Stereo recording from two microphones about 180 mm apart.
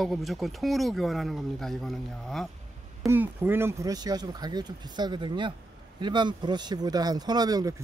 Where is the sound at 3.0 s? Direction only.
10° right (ahead or behind).